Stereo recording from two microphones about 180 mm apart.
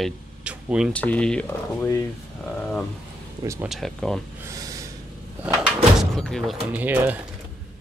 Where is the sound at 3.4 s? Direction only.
15° right (ahead or behind).